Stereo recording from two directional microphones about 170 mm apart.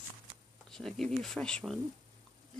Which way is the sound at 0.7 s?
Centre (ahead or behind).